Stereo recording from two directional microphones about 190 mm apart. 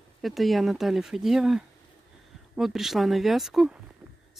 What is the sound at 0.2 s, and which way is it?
Speech, centre (ahead or behind).